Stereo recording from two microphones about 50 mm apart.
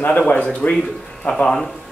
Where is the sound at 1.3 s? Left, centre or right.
Left.